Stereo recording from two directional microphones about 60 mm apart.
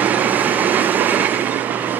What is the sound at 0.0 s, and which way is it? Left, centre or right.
Train, right.